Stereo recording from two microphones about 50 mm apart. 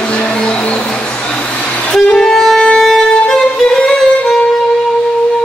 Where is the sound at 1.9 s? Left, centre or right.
Centre.